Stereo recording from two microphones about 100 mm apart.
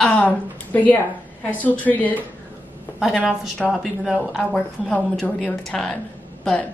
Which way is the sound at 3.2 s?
Centre (ahead or behind).